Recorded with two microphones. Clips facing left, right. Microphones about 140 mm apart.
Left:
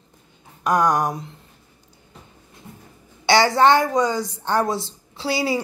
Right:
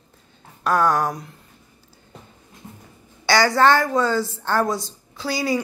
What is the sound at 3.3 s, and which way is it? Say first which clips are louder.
A woman's voice: left 1 dB; 25° left (ahead or behind).